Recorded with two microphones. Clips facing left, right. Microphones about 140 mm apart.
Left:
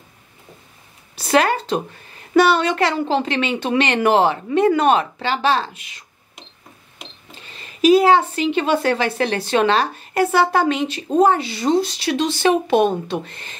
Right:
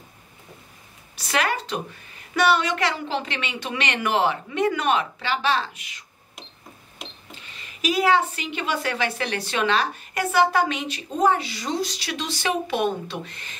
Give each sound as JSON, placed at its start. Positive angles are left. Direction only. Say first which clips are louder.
{"t": 1.1, "sound": "a woman's voice", "louder": "left 8 dB", "side_deg": 35}
{"t": 7.0, "sound": "cash register", "louder": "even", "side_deg": 0}
{"t": 7.5, "sound": "a woman's voice", "louder": "left 11 dB", "side_deg": 30}